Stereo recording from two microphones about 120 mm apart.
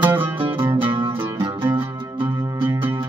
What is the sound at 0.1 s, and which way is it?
Music, 20° right (ahead or behind).